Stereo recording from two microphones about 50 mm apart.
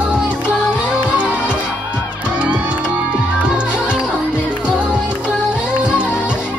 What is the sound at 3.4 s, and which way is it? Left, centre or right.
Music, right.